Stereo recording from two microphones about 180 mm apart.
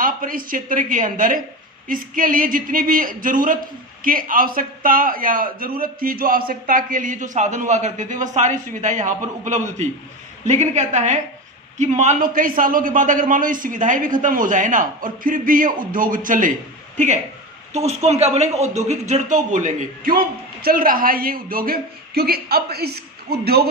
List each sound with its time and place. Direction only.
0.0 s a man's voice: 50° right (ahead or behind)